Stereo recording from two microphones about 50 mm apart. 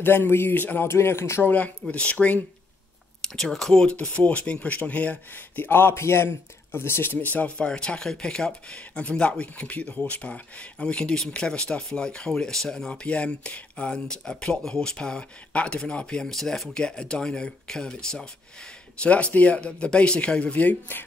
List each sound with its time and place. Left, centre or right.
0.0 s speech: left
0.8 s speech: left
1.4 s speech: left
3.3 s speech: centre
3.8 s speech: left
5.6 s speech: left
5.9 s speech: left
7.2 s speech: left
7.5 s speech: centre
13.0 s speech: left
16.3 s speech: centre
16.8 s speech: centre
19.0 s speech: left